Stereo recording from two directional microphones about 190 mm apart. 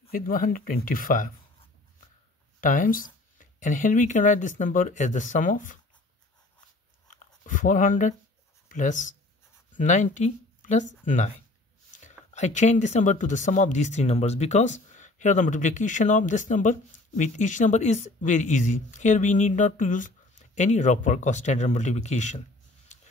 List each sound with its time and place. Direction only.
0.1 s speech: 45° left (ahead or behind)
2.6 s speech: 45° left (ahead or behind)
7.1 s a sound: 45° left (ahead or behind)
8.7 s speech: 40° left (ahead or behind)